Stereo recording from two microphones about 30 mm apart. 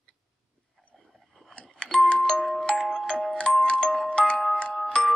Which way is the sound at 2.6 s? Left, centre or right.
Left.